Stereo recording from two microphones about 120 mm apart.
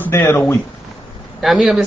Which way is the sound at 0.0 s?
20° left (ahead or behind).